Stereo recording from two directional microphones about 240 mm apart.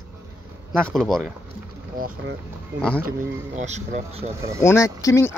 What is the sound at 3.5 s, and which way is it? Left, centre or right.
Speech, right.